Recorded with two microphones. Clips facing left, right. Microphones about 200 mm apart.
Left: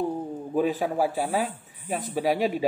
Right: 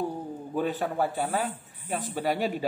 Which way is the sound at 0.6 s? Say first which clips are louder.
Left 4 dB; 5° left (ahead or behind).